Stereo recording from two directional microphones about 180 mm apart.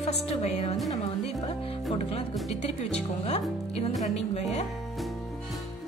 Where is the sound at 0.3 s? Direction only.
35° left (ahead or behind).